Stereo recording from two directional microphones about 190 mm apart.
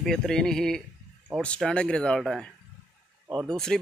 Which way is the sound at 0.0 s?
Centre (ahead or behind).